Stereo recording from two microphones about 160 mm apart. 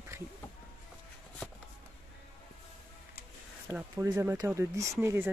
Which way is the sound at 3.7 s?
30° right (ahead or behind).